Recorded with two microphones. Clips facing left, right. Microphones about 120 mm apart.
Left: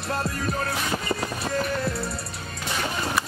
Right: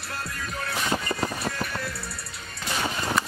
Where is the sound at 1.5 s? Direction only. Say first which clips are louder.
Left 5 dB; 25° left (ahead or behind).